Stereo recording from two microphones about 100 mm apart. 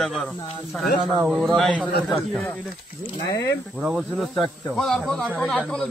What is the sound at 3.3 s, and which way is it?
Speech, 35° left (ahead or behind).